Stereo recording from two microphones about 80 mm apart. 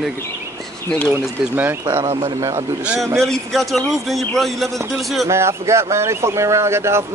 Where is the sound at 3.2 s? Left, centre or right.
Centre.